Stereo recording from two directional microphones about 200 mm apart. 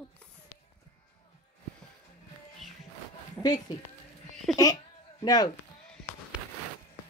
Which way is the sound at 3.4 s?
10° left (ahead or behind).